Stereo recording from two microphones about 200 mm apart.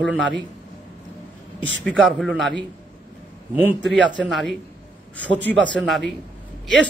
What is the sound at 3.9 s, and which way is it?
Speech, 65° right (ahead or behind).